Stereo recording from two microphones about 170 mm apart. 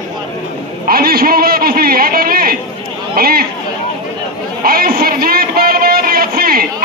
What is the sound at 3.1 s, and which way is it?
Chatter, 60° right (ahead or behind).